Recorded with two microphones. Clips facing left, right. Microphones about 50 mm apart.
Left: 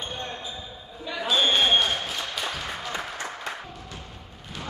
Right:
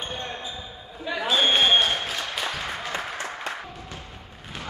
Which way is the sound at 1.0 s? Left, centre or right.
Centre.